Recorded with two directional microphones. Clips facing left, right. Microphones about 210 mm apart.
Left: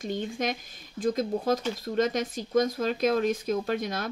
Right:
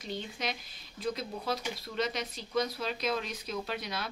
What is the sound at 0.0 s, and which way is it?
Speech, 50° left (ahead or behind).